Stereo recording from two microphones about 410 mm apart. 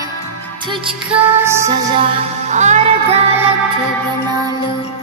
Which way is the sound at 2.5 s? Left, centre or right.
Centre.